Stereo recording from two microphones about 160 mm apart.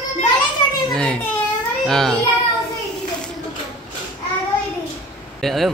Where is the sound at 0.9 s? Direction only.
5° left (ahead or behind).